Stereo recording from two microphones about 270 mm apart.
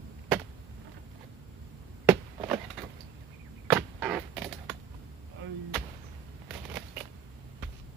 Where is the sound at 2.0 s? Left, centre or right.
Centre.